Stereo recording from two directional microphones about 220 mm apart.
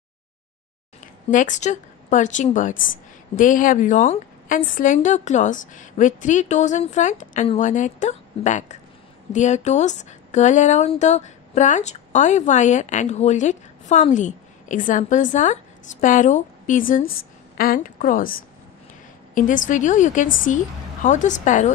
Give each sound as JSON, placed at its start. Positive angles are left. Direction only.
{"t": 1.0, "sound": "a woman's voice", "side_deg": 35}